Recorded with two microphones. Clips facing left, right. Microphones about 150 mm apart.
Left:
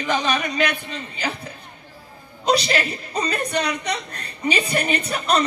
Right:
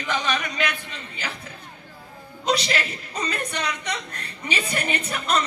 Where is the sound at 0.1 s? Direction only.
35° left (ahead or behind).